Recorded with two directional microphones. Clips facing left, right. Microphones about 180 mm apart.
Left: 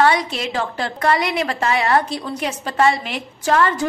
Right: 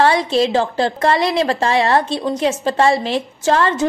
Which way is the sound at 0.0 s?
30° right (ahead or behind).